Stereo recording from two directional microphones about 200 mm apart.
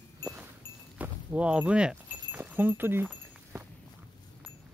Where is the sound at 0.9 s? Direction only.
5° right (ahead or behind).